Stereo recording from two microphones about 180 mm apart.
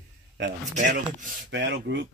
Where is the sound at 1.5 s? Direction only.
85° right.